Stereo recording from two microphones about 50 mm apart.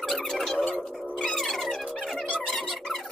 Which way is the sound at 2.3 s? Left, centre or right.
Centre.